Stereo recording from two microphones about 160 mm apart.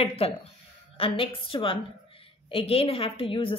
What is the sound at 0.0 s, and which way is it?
A woman's voice, 40° left (ahead or behind).